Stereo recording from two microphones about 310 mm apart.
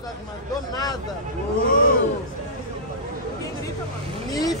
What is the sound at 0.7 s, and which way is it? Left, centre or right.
Speech, centre.